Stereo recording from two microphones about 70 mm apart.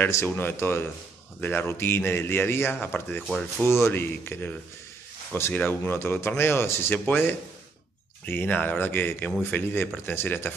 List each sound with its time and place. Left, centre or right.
0.1 s speech: left